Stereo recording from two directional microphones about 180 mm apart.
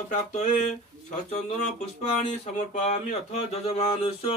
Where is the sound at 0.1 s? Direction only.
40° left (ahead or behind).